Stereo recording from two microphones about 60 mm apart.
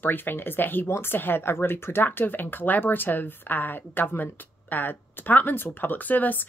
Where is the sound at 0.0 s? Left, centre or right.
Left.